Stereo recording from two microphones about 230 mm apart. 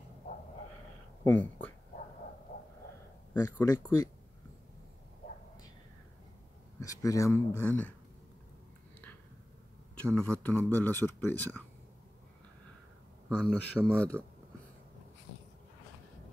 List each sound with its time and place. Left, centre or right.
1.2 s speech: centre
3.3 s speech: centre
6.8 s speech: centre
10.1 s speech: centre
13.4 s speech: centre